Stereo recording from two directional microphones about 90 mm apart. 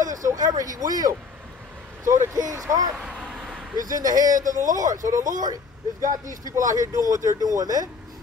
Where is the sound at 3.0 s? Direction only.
10° right (ahead or behind).